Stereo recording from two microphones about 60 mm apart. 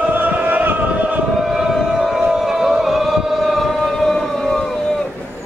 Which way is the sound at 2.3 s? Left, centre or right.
Centre.